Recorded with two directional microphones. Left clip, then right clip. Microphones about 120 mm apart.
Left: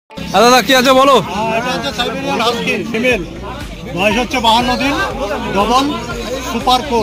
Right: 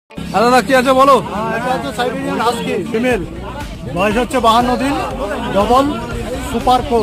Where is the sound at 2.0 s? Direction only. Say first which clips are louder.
Left 1 dB; 40° right (ahead or behind).